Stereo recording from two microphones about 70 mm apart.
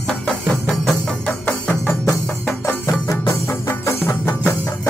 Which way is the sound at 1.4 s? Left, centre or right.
Left.